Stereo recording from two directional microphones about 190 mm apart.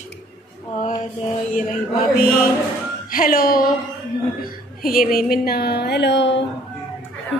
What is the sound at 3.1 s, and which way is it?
A woman's voice, 50° left (ahead or behind).